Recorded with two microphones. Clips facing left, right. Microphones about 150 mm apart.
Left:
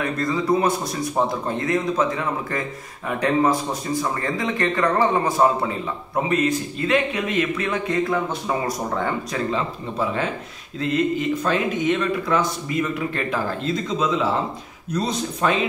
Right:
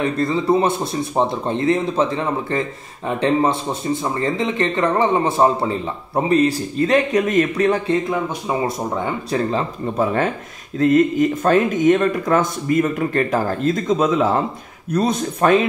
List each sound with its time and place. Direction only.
0.0 s speech: 25° right (ahead or behind)
8.1 s speech: 15° right (ahead or behind)
9.3 s speech: 40° right (ahead or behind)